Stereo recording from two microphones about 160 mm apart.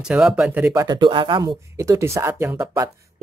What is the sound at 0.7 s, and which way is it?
Speech, 20° right (ahead or behind).